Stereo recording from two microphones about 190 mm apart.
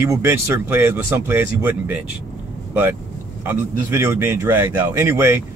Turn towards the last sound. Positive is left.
turn(degrees=-10)  # may be behind; listen again after turning